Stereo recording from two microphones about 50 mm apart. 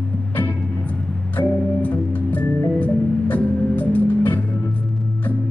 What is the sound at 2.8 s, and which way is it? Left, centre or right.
Music, left.